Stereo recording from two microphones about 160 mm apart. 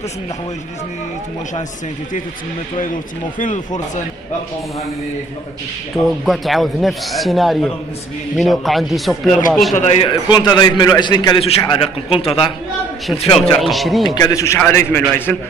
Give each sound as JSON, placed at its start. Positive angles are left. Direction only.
{"t": 3.3, "sound": "speech", "side_deg": 50}
{"t": 6.0, "sound": "a man's voice", "side_deg": 0}
{"t": 9.8, "sound": "a man's voice", "side_deg": 40}
{"t": 10.3, "sound": "a man's voice", "side_deg": 25}
{"t": 13.6, "sound": "a man's voice", "side_deg": 0}
{"t": 14.0, "sound": "a man's voice", "side_deg": 25}